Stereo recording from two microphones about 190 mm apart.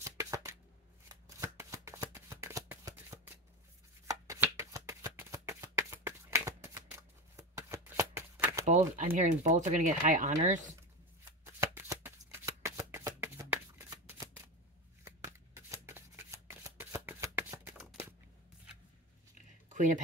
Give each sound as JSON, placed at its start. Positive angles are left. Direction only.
{"t": 0.0, "sound": "shuffling cards", "side_deg": -15}
{"t": 8.6, "sound": "speech", "side_deg": -40}
{"t": 11.4, "sound": "shuffling cards", "side_deg": -15}
{"t": 19.7, "sound": "a sound", "side_deg": -40}